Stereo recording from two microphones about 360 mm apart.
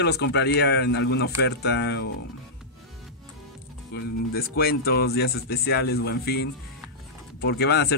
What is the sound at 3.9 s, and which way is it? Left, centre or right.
A man's voice, left.